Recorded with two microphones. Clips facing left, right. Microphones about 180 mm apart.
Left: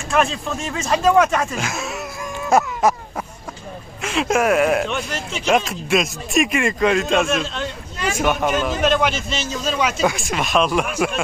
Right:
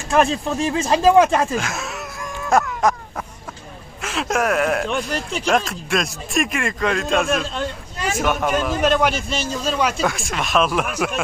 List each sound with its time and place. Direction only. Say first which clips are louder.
0.1 s speech: right 2 dB; 30° right (ahead or behind)
1.6 s speech: left 2 dB; centre (ahead or behind)
2.5 s wail: left 1 dB; 5° left (ahead or behind)
4.0 s speech: left 3 dB; centre (ahead or behind)